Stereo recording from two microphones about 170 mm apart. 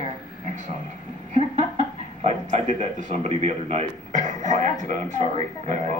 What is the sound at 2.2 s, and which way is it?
A man's voice, 45° right (ahead or behind).